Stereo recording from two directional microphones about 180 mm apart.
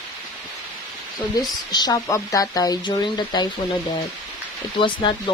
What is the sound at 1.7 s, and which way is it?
Speech, 20° left (ahead or behind).